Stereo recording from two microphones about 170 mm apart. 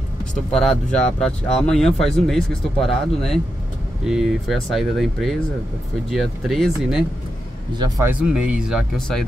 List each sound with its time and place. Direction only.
0.6 s speech: 5° left (ahead or behind)
7.7 s a man's voice: 25° right (ahead or behind)
8.1 s speech: 5° right (ahead or behind)